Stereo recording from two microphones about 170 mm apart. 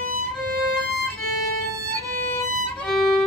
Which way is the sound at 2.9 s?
Centre (ahead or behind).